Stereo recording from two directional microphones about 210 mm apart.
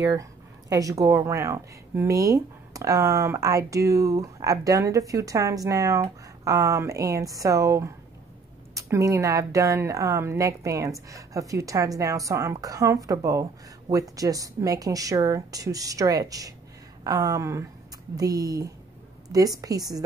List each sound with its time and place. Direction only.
0.0 s speech: 15° right (ahead or behind)